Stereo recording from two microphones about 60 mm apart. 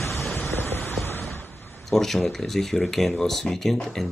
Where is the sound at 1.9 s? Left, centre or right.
Centre.